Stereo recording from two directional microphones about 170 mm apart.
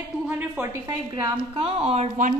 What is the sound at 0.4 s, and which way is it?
Speech, 15° right (ahead or behind).